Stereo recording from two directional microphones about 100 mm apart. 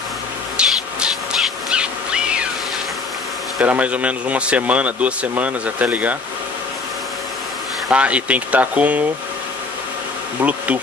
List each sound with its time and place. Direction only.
0.6 s a sound: 10° right (ahead or behind)
3.6 s speech: 15° right (ahead or behind)
7.9 s speech: 15° right (ahead or behind)
10.4 s speech: 15° right (ahead or behind)